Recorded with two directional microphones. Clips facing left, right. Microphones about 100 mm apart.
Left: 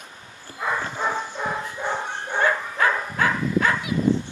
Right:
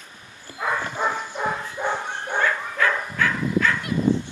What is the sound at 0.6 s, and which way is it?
Bow-wow, 15° right (ahead or behind).